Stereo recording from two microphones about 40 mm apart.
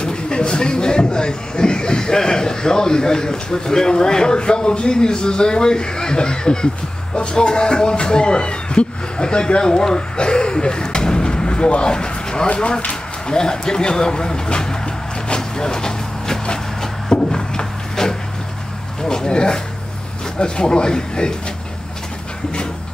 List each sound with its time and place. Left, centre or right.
0.0 s speech: left
15.2 s vehicle: centre
19.0 s speech: centre